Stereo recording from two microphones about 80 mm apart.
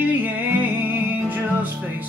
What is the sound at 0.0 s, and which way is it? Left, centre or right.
Music, right.